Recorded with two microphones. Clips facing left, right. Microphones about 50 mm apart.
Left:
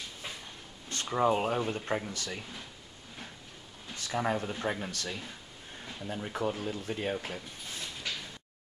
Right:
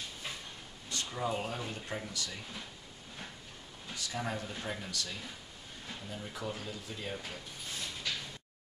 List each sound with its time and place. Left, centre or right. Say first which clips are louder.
0.8 s speech: left 8 dB; left
3.9 s speech: left 6 dB; left